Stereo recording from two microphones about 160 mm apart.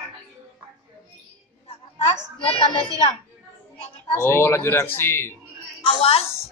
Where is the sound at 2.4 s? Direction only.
35° left (ahead or behind).